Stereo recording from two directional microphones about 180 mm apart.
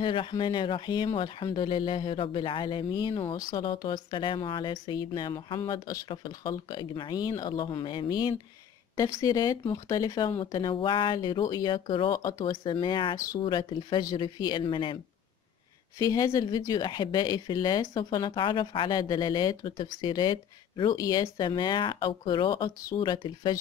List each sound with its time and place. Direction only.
0.0 s speech: 25° left (ahead or behind)
16.0 s speech: 20° left (ahead or behind)